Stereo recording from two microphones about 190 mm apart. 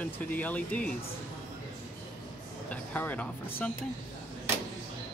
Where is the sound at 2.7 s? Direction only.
10° left (ahead or behind).